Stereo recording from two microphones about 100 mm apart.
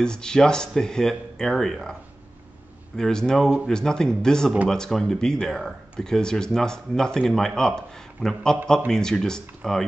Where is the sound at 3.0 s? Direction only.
5° left (ahead or behind).